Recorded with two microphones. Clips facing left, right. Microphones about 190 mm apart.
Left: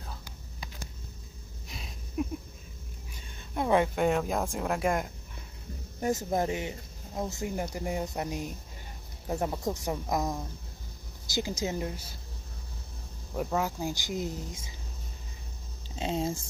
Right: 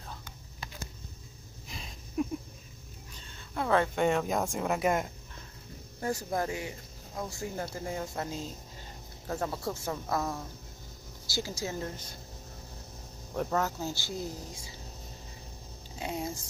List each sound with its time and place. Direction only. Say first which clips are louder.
1.7 s a sound: even; 5° left (ahead or behind)
3.1 s a sound: left 2 dB; 15° left (ahead or behind)
3.9 s speech: left 1 dB; centre (ahead or behind)
5.9 s speech: left 3 dB; 20° left (ahead or behind)
13.3 s speech: even; 10° left (ahead or behind)
16.0 s speech: left 5 dB; 25° left (ahead or behind)